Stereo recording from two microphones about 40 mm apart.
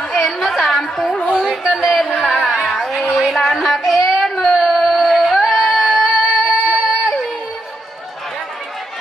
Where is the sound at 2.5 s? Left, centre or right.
Left.